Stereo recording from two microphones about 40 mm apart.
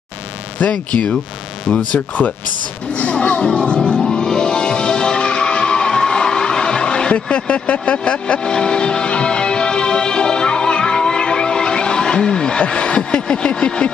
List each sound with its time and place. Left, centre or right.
0.7 s speech: left
3.0 s music: left